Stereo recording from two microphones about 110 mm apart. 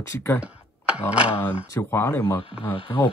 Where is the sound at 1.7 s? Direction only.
25° left (ahead or behind).